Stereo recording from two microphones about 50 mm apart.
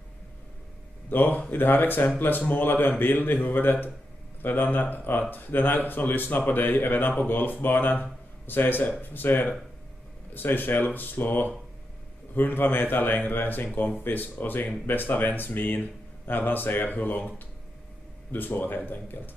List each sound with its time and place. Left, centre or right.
1.1 s speech: left
18.3 s speech: left